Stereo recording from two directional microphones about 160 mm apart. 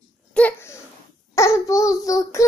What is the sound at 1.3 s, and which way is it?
A child's voice, 20° left (ahead or behind).